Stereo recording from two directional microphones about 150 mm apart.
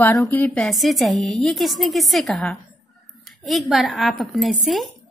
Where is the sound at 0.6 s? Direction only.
Centre (ahead or behind).